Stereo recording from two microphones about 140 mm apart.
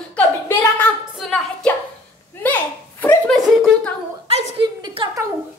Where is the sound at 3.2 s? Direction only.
Centre (ahead or behind).